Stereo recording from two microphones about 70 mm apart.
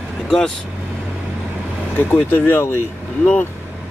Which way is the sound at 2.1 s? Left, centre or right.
Left.